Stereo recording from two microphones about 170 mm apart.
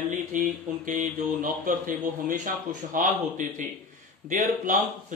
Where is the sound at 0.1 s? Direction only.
50° right (ahead or behind).